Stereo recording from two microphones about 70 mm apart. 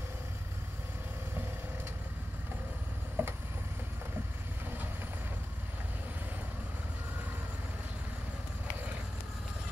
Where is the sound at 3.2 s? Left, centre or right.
Right.